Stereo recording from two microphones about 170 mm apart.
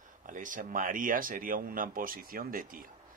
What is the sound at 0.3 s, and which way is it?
Speech, 50° right (ahead or behind).